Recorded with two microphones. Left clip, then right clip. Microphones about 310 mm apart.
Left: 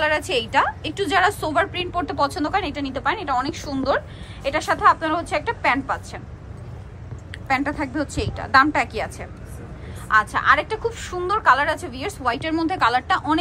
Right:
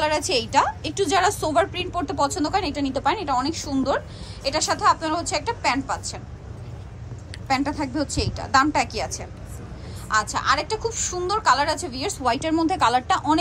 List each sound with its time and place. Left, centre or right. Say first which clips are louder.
0.0 s a woman's voice: left 1 dB; centre
7.4 s a woman's voice: left 1 dB; centre